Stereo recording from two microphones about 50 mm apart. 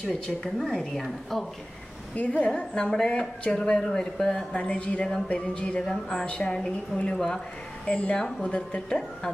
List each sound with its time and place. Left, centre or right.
0.0 s a woman's voice: centre
2.1 s speech: left